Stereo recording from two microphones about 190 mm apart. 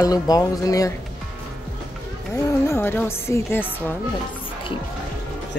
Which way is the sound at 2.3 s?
15° left (ahead or behind).